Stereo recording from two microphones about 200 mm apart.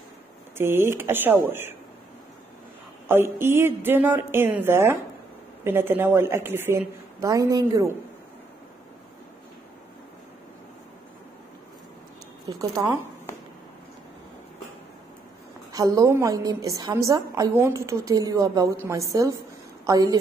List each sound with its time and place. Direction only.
0.6 s a woman's voice: 10° right (ahead or behind)
3.1 s a woman's voice: 10° right (ahead or behind)
12.4 s a woman's voice: 15° right (ahead or behind)
15.7 s a woman's voice: 20° right (ahead or behind)